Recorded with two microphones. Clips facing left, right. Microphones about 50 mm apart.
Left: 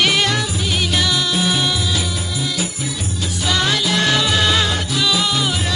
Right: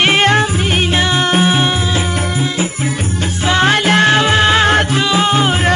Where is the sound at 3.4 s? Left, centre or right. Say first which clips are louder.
Right 7 dB; right.